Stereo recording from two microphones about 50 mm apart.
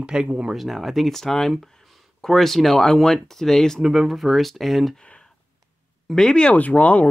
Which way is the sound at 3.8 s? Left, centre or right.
Centre.